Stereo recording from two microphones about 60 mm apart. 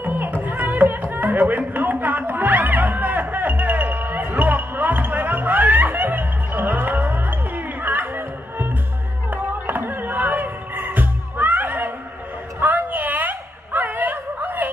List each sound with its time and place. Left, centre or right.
0.0 s music: right
9.3 s music: right
12.5 s a sound: right